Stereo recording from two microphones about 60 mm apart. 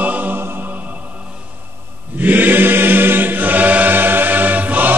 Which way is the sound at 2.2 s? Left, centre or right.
Right.